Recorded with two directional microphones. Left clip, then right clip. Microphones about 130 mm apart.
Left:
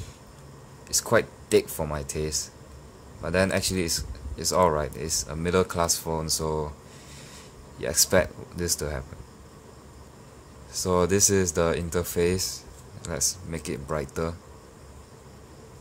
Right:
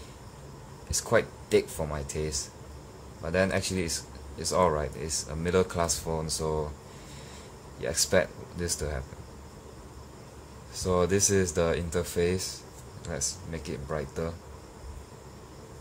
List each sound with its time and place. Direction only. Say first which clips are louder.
0.8 s speech: left 3 dB; 35° left (ahead or behind)
7.8 s speech: left 3 dB; 35° left (ahead or behind)
10.7 s speech: left 3 dB; 35° left (ahead or behind)